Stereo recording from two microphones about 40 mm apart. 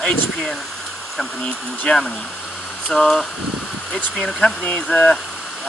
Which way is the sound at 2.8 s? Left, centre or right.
Centre.